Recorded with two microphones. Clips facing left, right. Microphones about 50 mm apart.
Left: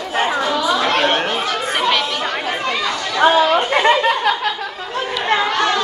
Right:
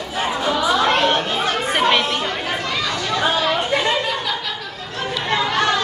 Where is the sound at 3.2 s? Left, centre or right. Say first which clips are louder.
Left 8 dB; left.